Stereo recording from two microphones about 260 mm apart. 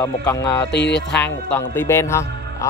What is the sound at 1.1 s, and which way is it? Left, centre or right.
A man's voice, centre.